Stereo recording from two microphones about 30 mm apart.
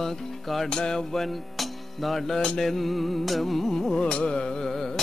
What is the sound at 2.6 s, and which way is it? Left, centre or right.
Carnatic music, centre.